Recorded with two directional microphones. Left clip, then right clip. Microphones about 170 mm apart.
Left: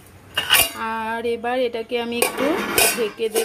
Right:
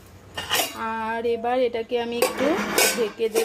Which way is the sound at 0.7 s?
5° left (ahead or behind).